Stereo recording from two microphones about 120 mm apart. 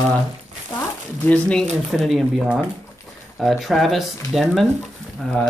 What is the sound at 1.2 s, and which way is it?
Speech, 10° left (ahead or behind).